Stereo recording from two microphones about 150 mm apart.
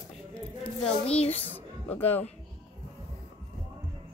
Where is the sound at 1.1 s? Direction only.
45° left (ahead or behind).